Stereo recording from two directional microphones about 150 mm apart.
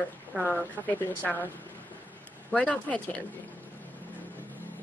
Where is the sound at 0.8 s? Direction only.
10° left (ahead or behind).